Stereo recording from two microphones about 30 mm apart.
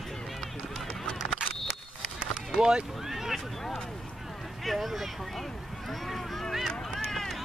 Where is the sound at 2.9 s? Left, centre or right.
Centre.